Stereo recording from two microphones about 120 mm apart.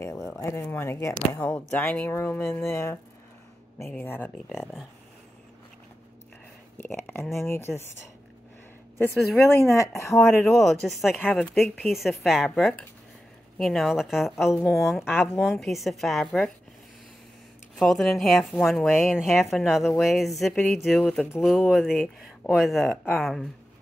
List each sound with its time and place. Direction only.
0.4 s speech: 20° left (ahead or behind)
1.4 s speech: 10° left (ahead or behind)
4.5 s speech: centre (ahead or behind)
6.8 s speech: 20° left (ahead or behind)
9.5 s speech: 25° left (ahead or behind)
10.1 s speech: centre (ahead or behind)
17.7 s speech: centre (ahead or behind)
21.0 s speech: 10° left (ahead or behind)
21.6 s speech: centre (ahead or behind)